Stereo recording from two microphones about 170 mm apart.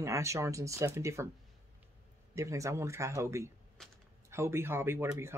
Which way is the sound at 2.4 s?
20° right (ahead or behind).